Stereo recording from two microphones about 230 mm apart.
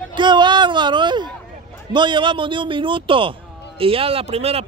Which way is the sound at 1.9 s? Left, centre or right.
Right.